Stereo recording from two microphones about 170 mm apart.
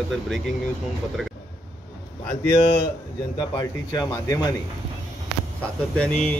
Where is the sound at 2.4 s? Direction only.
25° left (ahead or behind).